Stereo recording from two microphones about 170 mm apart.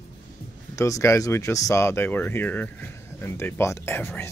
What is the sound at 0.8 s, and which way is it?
Speech, 20° left (ahead or behind).